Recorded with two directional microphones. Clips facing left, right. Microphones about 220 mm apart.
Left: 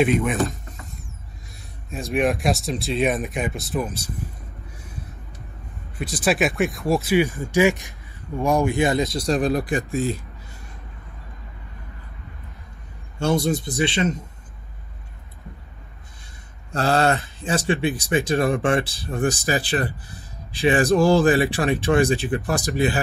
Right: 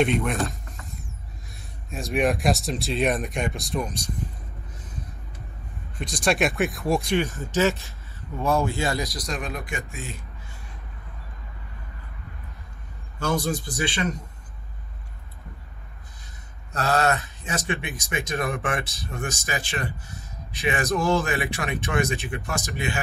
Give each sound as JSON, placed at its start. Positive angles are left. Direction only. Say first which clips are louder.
{"t": 0.0, "sound": "speech", "louder": "left 3 dB", "side_deg": 0}
{"t": 5.9, "sound": "speech", "louder": "left 2 dB", "side_deg": 5}
{"t": 13.2, "sound": "speech", "louder": "left 5 dB", "side_deg": 25}
{"t": 16.7, "sound": "speech", "louder": "left 3 dB", "side_deg": 30}